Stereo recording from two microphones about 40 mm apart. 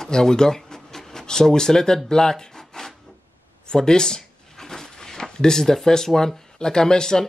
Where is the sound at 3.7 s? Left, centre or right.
Centre.